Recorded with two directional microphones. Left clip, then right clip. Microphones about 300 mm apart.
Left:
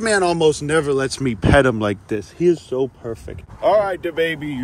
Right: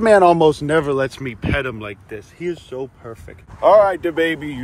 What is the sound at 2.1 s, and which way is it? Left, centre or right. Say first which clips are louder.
Speech: left 8 dB; left.